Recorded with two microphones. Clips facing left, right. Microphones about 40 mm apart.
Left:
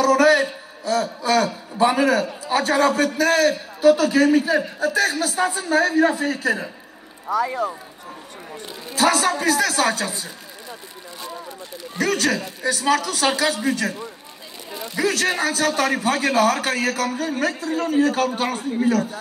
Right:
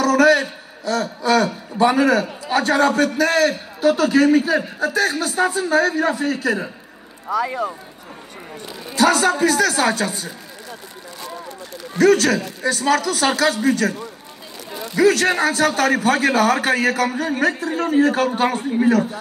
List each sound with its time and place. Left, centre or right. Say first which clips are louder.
0.0 s a man's voice: right 1 dB; centre
8.9 s speech: right 3 dB; centre
12.0 s speech: right 6 dB; centre
15.0 s speech: right 5 dB; centre
16.4 s a man's voice: right 3 dB; centre